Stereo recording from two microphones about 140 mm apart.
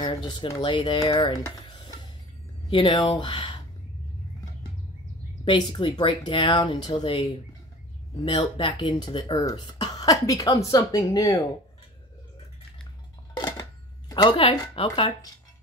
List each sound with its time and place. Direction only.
0.0 s a sound: 35° left (ahead or behind)
0.6 s speech: 35° left (ahead or behind)
5.4 s speech: 35° left (ahead or behind)
13.4 s dishes: 30° left (ahead or behind)